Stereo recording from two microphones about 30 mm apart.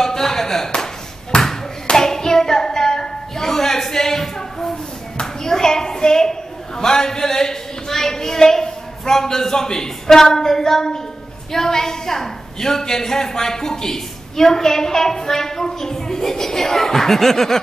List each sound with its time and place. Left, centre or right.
0.0 s music: centre
1.3 s bouncing: left
2.0 s hands: centre
5.2 s clapping: centre
6.8 s a sound: centre
11.5 s a woman's voice: centre